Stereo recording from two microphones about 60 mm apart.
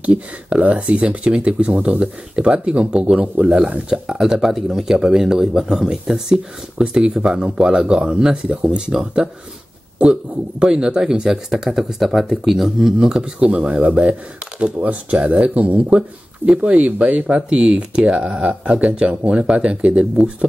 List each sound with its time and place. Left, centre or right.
0.0 s speech: right
3.9 s speech: centre